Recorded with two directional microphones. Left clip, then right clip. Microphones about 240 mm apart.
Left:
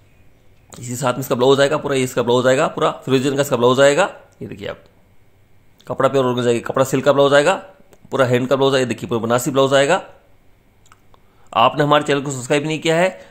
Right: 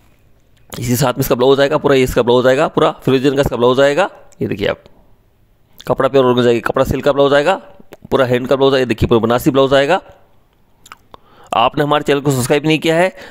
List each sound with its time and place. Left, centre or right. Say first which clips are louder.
0.7 s speech: right 5 dB; right